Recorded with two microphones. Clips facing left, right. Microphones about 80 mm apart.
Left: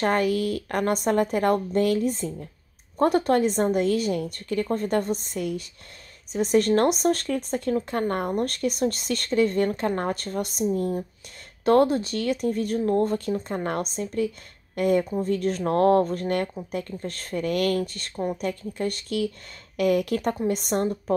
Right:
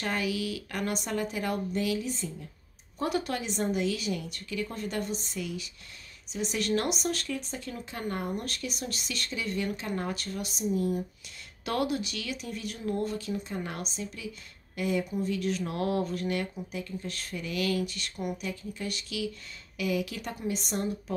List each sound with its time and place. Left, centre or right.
0.0 s speech: left